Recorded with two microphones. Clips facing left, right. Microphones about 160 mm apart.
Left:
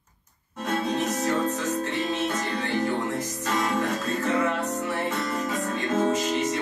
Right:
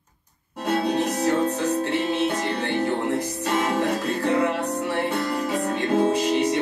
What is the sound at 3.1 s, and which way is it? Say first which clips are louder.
Speech: right 5 dB; 70° right (ahead or behind).